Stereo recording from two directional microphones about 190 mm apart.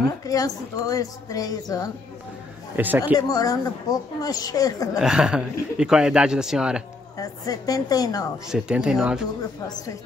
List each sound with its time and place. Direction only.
0.2 s a woman's voice: 20° left (ahead or behind)
2.7 s speech: 10° right (ahead or behind)
3.2 s a woman's voice: 20° left (ahead or behind)
4.9 s speech: 5° right (ahead or behind)
7.2 s a woman's voice: 20° left (ahead or behind)
8.5 s speech: 5° right (ahead or behind)